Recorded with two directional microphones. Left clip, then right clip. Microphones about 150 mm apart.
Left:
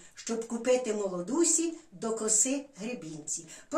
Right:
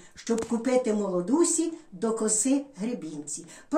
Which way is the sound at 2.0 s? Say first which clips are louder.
Right 3 dB; 15° left (ahead or behind).